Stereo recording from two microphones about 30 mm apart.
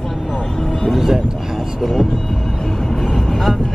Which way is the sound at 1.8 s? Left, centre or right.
Centre.